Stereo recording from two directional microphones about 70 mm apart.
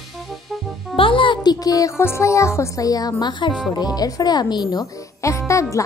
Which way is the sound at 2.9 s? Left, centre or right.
Left.